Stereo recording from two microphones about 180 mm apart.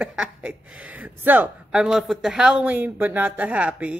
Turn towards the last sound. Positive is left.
turn(degrees=-5)  # may be behind; listen again after turning